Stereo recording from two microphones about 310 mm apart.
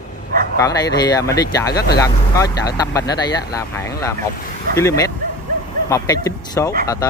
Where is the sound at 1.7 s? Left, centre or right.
Left.